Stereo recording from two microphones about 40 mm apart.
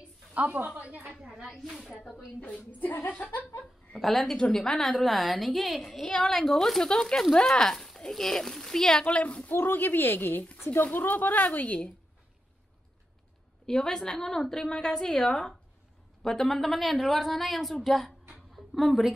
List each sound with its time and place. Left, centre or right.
0.3 s a sound: right
0.7 s a woman's voice: right
1.5 s a woman's voice: centre
2.8 s a woman's voice: left
4.0 s a woman's voice: centre
4.4 s a woman's voice: centre
4.7 s a woman's voice: centre
6.0 s a woman's voice: centre
6.4 s a woman's voice: centre
9.0 s a woman's voice: left
9.5 s a woman's voice: left
13.7 s a woman's voice: centre
18.5 s a sound: centre